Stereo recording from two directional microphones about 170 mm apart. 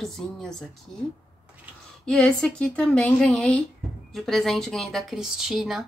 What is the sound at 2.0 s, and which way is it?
Speech, 5° left (ahead or behind).